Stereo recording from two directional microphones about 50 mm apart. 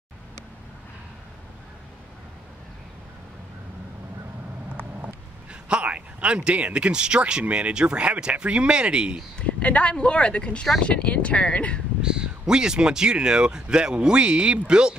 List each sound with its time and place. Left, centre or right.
5.5 s speech: right
9.4 s speech: left
12.0 s speech: centre